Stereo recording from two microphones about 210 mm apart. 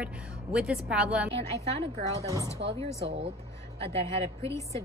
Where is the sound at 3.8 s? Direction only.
25° right (ahead or behind).